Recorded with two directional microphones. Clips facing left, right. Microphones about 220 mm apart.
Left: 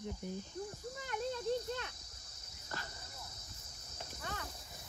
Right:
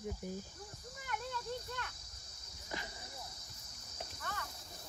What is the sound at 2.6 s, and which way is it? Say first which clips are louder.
Speech: right 2 dB; 15° right (ahead or behind).